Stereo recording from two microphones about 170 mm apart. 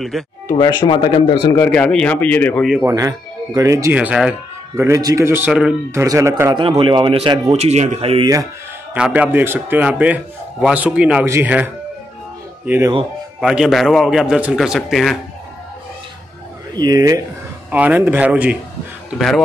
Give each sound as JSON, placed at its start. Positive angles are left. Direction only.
{"t": 0.1, "sound": "a man's voice", "side_deg": 0}
{"t": 0.5, "sound": "speech", "side_deg": 25}
{"t": 1.6, "sound": "speech", "side_deg": 5}
{"t": 2.8, "sound": "a man's voice", "side_deg": -20}
{"t": 4.7, "sound": "a man's voice", "side_deg": -15}
{"t": 6.5, "sound": "speech", "side_deg": -30}
{"t": 8.9, "sound": "a man's voice", "side_deg": -5}
{"t": 16.7, "sound": "speech", "side_deg": -20}
{"t": 17.6, "sound": "a man's voice", "side_deg": -10}